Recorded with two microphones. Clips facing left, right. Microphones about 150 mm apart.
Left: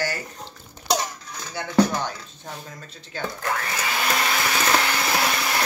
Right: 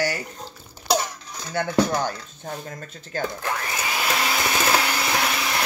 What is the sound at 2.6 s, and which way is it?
Speech, 50° right (ahead or behind).